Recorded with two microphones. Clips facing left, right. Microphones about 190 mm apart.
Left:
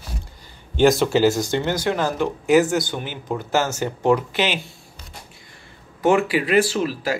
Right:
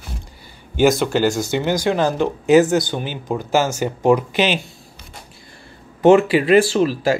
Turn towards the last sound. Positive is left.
turn(degrees=-25)  # may be behind; listen again after turning